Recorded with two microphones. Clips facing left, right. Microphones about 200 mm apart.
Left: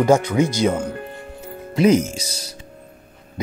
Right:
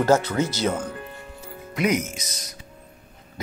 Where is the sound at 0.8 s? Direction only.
55° left (ahead or behind).